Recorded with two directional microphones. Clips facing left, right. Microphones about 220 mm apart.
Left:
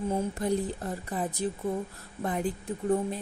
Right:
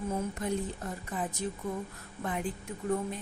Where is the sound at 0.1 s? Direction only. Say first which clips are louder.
Left 4 dB; 30° left (ahead or behind).